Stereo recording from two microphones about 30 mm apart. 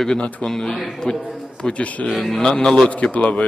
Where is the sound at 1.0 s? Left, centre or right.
Left.